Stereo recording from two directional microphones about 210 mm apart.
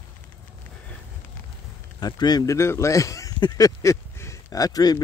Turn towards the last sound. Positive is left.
turn(degrees=20)  # may be behind; listen again after turning